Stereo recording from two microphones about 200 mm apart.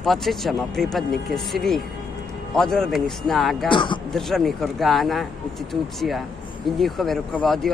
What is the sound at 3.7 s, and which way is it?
Speech, 25° left (ahead or behind).